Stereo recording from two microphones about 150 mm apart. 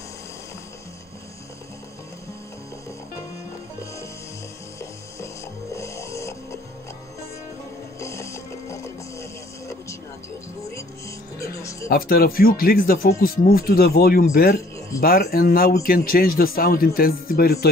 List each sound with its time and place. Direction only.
5.8 s music: 20° left (ahead or behind)
8.0 s music: 20° left (ahead or behind)
11.3 s music: 20° left (ahead or behind)
11.9 s speech: 80° left